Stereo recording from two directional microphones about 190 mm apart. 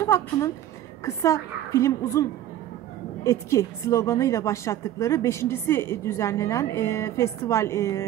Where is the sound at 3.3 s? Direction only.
15° left (ahead or behind).